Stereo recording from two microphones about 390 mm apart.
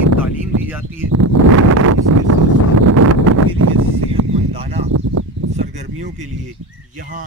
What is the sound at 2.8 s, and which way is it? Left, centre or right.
Wind noise, right.